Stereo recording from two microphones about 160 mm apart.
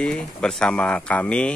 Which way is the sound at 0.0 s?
5° left (ahead or behind).